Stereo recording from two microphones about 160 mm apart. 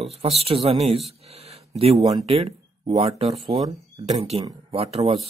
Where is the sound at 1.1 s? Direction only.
40° right (ahead or behind).